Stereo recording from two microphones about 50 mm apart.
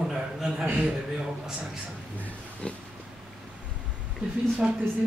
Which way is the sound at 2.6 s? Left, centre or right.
Centre.